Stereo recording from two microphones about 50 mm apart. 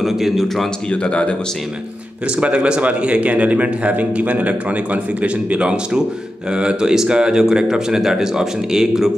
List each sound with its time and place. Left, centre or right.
0.0 s speech: centre
0.8 s speech: left
2.4 s a man's voice: right